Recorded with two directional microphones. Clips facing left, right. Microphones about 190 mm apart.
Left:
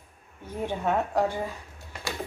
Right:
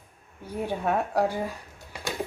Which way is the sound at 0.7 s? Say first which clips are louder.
Even; 10° right (ahead or behind).